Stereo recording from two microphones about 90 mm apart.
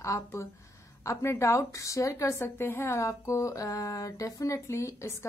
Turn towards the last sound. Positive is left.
turn(degrees=30)  # may be behind; listen again after turning